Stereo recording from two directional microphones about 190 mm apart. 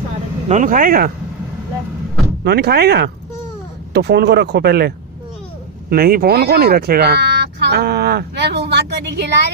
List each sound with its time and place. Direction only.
0.5 s speech: 45° right (ahead or behind)
2.4 s speech: 55° right (ahead or behind)